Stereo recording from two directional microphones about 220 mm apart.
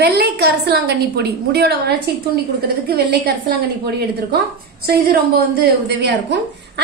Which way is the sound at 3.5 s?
45° right (ahead or behind).